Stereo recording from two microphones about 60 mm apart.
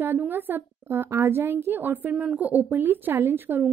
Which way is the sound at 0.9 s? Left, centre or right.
Right.